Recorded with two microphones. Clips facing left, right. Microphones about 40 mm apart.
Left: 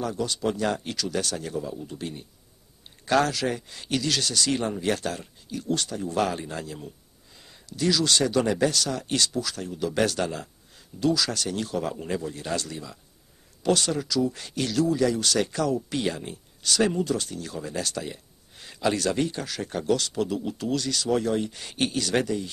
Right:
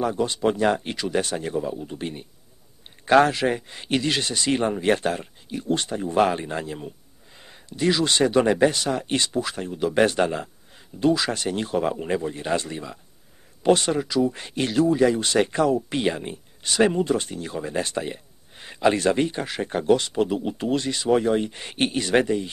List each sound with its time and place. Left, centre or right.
0.0 s speech: right